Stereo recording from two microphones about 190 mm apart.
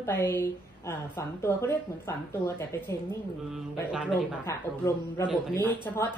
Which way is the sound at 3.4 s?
5° right (ahead or behind).